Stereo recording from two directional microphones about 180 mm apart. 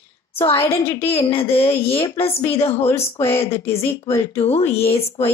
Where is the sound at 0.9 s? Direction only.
30° left (ahead or behind).